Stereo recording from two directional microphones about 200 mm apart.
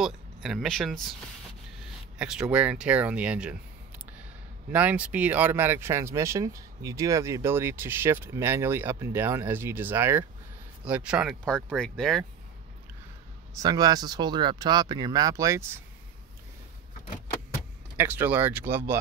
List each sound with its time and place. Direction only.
0.0 s speech: centre (ahead or behind)
2.1 s speech: 5° right (ahead or behind)
4.7 s speech: 10° right (ahead or behind)
13.6 s speech: 20° right (ahead or behind)
17.9 s speech: 10° right (ahead or behind)